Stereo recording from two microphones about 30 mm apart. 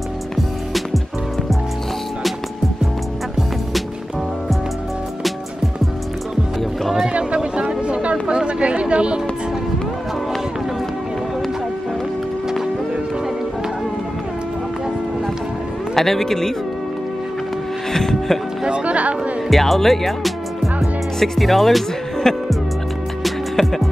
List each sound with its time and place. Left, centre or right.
7.1 s chatter: right
8.4 s music: right
15.9 s speech: centre
17.9 s music: centre
18.7 s music: right
19.6 s speech: centre
23.5 s music: centre